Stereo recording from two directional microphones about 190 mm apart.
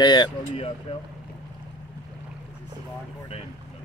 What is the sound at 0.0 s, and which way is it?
Speech, 25° left (ahead or behind).